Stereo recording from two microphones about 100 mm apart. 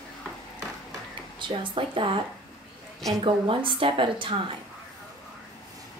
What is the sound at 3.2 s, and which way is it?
Speech, 60° right (ahead or behind).